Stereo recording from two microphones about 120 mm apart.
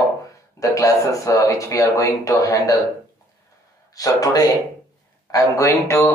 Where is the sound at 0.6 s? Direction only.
25° left (ahead or behind).